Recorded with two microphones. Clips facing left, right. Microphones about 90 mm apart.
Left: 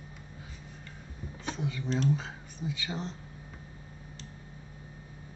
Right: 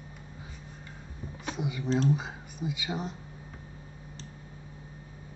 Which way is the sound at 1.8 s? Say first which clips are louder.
Right 3 dB; 35° right (ahead or behind).